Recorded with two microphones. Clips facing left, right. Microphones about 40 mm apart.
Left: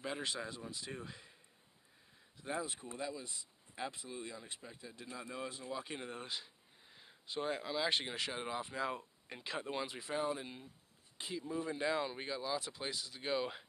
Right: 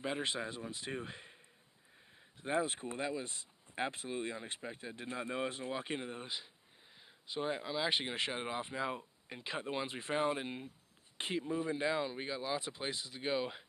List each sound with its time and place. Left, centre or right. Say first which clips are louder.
0.0 s speech: right 3 dB; right
2.4 s speech: right 6 dB; right
6.0 s speech: right 1 dB; centre
8.1 s speech: right 2 dB; right
9.8 s speech: right 4 dB; right
11.4 s speech: right 1 dB; centre
12.4 s speech: right 1 dB; right